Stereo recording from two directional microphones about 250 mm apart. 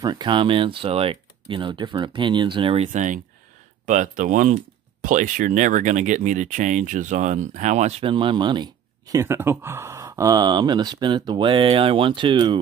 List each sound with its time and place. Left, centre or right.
0.0 s speech: centre